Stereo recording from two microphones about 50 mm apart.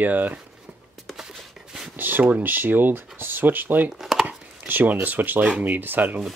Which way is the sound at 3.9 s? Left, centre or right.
Centre.